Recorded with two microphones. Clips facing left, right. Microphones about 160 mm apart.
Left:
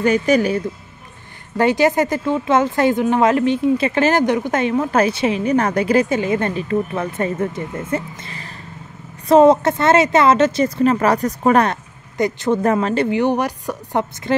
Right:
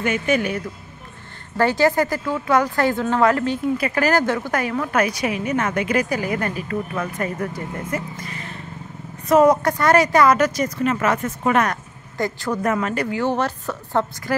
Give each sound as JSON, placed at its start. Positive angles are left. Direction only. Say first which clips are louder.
{"t": 0.0, "sound": "speech", "louder": "left 5 dB", "side_deg": 35}
{"t": 1.6, "sound": "speech", "louder": "left 2 dB", "side_deg": 20}